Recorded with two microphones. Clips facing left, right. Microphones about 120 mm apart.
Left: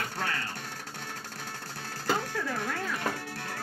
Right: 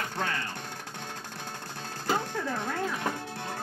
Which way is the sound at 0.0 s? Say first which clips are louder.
Right 1 dB; 20° right (ahead or behind).